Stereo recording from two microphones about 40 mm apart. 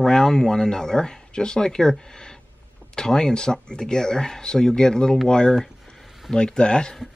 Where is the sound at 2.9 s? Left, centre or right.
Centre.